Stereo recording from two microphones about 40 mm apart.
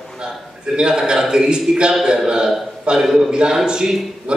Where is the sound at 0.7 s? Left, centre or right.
Right.